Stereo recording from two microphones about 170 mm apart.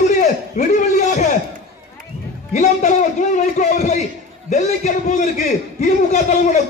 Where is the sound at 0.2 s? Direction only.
45° left (ahead or behind).